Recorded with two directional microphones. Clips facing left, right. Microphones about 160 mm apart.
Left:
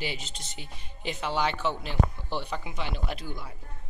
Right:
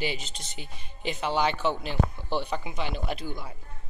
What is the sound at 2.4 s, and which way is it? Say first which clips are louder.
Speech: right 1 dB; 10° right (ahead or behind).